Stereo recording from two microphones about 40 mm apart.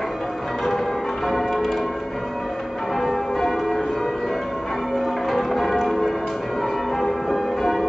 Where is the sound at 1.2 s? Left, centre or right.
Centre.